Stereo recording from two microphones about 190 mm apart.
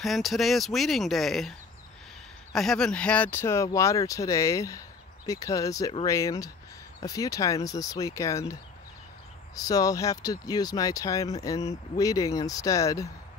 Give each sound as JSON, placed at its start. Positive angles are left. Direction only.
{"t": 0.0, "sound": "speech", "side_deg": 0}
{"t": 2.5, "sound": "speech", "side_deg": 0}
{"t": 9.6, "sound": "speech", "side_deg": 20}